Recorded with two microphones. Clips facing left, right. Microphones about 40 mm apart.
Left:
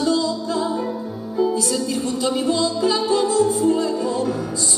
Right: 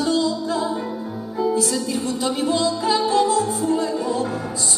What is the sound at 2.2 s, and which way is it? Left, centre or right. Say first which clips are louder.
Music: left 1 dB; right.